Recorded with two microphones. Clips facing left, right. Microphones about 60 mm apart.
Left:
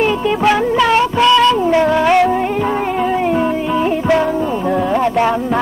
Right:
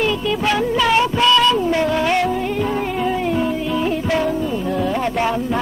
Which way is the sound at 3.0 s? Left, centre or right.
Left.